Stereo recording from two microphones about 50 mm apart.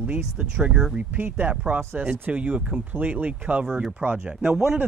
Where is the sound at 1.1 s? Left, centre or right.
Right.